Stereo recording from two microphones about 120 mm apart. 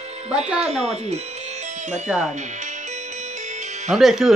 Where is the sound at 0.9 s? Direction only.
65° right (ahead or behind).